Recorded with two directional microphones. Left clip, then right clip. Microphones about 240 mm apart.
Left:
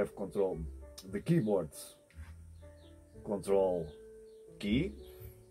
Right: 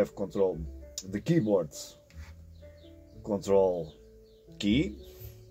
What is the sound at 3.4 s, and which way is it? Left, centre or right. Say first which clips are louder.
Speech: right 5 dB; right.